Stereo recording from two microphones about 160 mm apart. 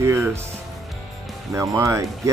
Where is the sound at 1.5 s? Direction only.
20° right (ahead or behind).